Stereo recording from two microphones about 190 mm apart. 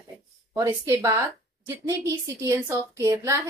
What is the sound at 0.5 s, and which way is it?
A woman's voice, 15° right (ahead or behind).